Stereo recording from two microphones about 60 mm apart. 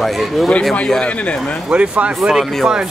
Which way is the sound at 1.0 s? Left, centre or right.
Left.